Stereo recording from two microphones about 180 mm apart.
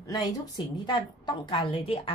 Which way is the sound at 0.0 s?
20° left (ahead or behind).